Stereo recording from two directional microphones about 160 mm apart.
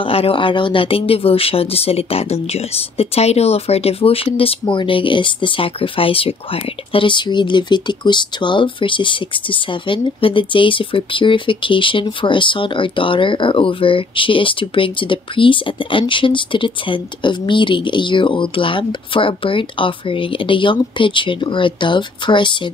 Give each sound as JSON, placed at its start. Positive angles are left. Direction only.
{"t": 0.0, "sound": "speech", "side_deg": 35}